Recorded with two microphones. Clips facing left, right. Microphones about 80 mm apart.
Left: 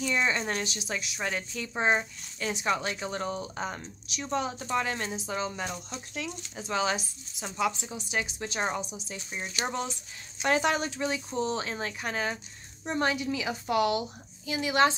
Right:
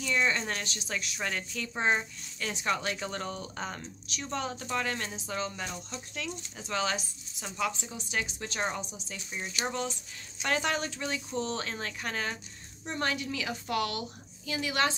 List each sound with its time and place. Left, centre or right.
0.0 s a woman's voice: centre